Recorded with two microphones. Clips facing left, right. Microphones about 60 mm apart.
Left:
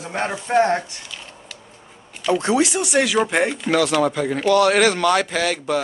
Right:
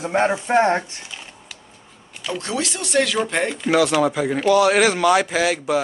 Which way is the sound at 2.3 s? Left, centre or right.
Centre.